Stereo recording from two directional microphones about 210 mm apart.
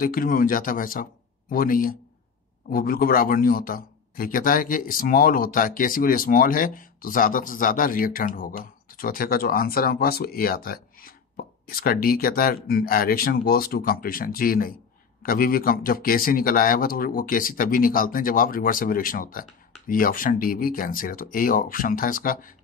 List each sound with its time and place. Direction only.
0.0 s speech: 40° left (ahead or behind)